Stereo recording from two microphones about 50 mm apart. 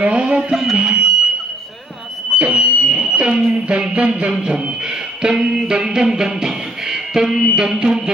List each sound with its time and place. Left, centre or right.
0.0 s music: right
0.4 s music: centre
0.7 s fire alarm: right
2.3 s a sound: right
4.3 s music: centre